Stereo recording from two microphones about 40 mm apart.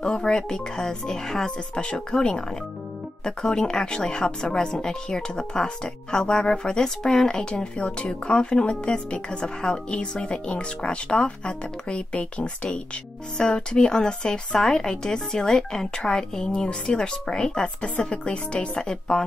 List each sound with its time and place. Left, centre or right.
0.0 s a woman's voice: centre
18.8 s a woman's voice: centre